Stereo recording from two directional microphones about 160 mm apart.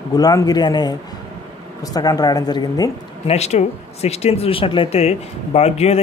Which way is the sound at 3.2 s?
40° left (ahead or behind).